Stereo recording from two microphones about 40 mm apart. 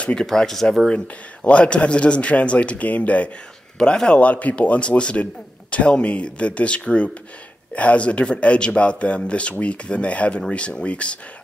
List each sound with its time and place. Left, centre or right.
0.2 s speech: centre
0.8 s a man's voice: left
3.7 s speech: centre
4.2 s a man's voice: left